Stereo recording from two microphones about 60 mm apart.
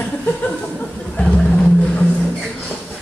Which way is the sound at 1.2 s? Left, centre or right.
Centre.